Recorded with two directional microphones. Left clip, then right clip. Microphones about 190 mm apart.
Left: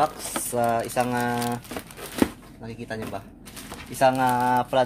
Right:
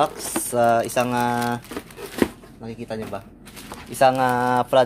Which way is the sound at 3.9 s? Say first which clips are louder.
Right 3 dB; 50° right (ahead or behind).